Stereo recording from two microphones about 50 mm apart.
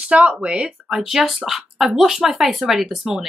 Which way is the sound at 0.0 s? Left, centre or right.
Centre.